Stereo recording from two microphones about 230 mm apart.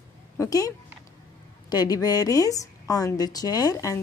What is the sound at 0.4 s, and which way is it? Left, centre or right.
A woman's voice, centre.